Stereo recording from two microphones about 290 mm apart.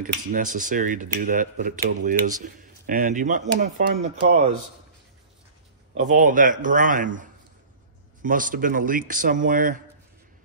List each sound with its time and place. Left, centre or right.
0.0 s speech: right
5.9 s speech: right